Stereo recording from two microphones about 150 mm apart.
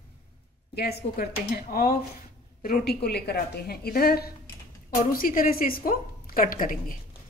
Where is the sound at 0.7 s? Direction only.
90° left.